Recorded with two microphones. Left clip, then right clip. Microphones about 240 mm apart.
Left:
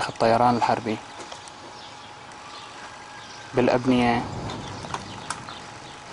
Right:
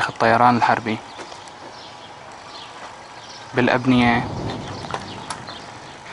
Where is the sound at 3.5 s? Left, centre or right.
Right.